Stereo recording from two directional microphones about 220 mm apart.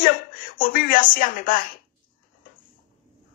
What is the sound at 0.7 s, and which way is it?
Speech, 40° left (ahead or behind).